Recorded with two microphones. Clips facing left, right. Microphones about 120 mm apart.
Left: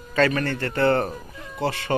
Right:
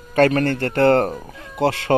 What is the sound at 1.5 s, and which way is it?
Speech, 90° right.